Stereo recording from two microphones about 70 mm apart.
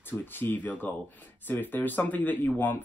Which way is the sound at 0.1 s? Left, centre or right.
Left.